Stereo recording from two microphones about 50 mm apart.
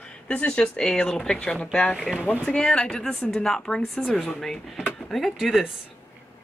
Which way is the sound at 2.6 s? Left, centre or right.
Centre.